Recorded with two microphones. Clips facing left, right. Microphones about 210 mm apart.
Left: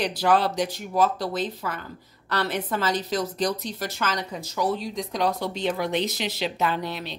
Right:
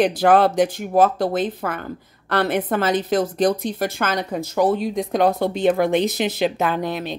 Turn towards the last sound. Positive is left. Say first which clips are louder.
# right 5 dB
turn(degrees=-50)  # may be behind; listen again after turning